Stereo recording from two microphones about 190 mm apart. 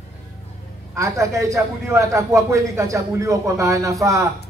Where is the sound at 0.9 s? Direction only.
15° right (ahead or behind).